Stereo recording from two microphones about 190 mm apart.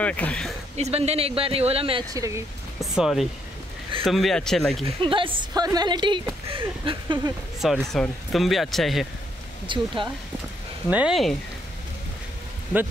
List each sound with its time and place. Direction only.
0.0 s speech: 5° left (ahead or behind)
0.7 s speech: 35° right (ahead or behind)
2.1 s speech: 15° right (ahead or behind)
2.8 s speech: centre (ahead or behind)
4.8 s a woman's voice: 25° right (ahead or behind)
7.6 s speech: centre (ahead or behind)
9.7 s a woman's voice: 25° right (ahead or behind)
10.9 s speech: 5° right (ahead or behind)